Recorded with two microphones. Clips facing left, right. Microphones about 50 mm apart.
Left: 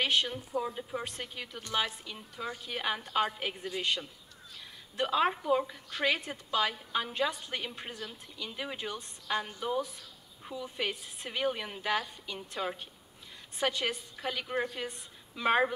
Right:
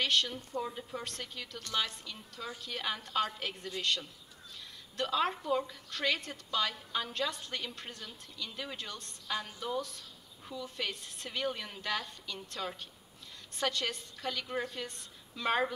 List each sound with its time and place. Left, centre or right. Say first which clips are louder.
0.0 s a woman's voice: left 2 dB; centre